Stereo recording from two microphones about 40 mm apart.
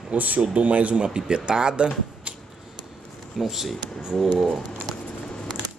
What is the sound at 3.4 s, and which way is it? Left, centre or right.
Speech, centre.